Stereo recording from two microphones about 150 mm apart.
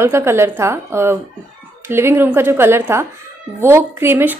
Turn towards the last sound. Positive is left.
turn(degrees=-15)  # may be behind; listen again after turning